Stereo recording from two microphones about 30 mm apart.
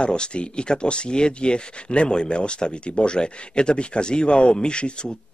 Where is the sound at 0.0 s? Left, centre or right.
Left.